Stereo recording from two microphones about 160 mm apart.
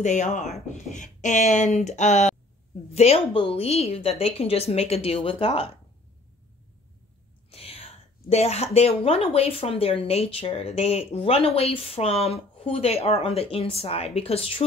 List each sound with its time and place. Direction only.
0.0 s a woman's voice: 50° left (ahead or behind)
7.5 s a woman's voice: 40° left (ahead or behind)